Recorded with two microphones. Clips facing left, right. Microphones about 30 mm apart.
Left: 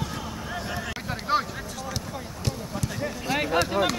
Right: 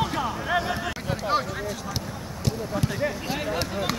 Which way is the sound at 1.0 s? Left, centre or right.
Centre.